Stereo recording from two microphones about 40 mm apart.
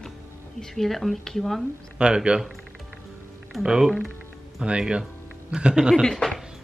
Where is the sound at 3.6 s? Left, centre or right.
Centre.